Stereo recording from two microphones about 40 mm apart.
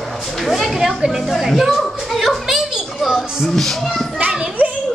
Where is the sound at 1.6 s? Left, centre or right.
Centre.